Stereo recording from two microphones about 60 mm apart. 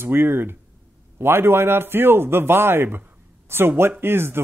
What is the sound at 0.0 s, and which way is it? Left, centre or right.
Speech, right.